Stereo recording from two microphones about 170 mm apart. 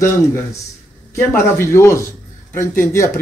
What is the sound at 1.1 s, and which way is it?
Speech, 15° left (ahead or behind).